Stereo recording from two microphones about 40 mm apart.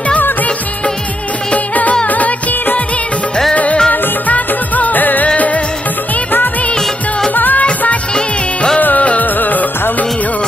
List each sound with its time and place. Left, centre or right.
1.5 s music: left
2.0 s music of bollywood: left
3.5 s music: left
4.3 s music of bollywood: left
7.3 s music: left
8.8 s music: left
9.2 s music of bollywood: left